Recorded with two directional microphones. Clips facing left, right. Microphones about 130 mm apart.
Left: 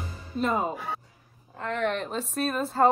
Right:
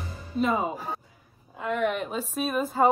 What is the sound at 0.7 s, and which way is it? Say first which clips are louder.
Speech: even; 40° right (ahead or behind).